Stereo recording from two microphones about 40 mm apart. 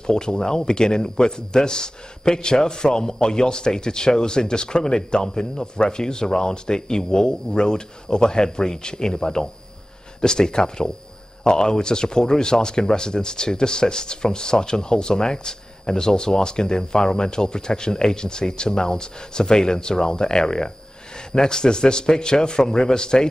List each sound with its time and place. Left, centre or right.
0.0 s speech: centre